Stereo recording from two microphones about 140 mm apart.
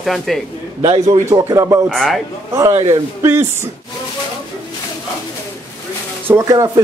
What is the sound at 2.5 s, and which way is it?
Speech, 25° right (ahead or behind).